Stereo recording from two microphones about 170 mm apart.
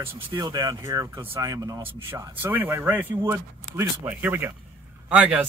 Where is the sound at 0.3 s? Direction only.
20° right (ahead or behind).